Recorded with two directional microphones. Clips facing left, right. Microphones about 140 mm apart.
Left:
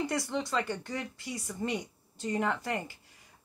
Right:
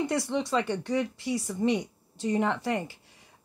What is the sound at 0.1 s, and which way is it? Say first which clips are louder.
Speech: right 4 dB; 25° right (ahead or behind).